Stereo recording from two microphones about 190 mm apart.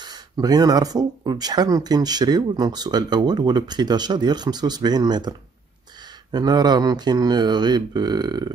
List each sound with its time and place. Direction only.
0.0 s speech: 20° right (ahead or behind)
6.3 s speech: 20° right (ahead or behind)